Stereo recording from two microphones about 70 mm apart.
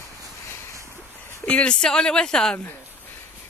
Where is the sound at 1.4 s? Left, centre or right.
Centre.